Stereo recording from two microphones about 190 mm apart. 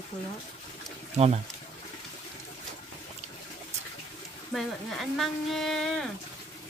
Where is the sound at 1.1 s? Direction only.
35° right (ahead or behind).